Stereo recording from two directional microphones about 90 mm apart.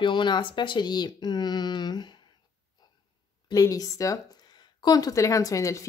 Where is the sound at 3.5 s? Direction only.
40° left (ahead or behind).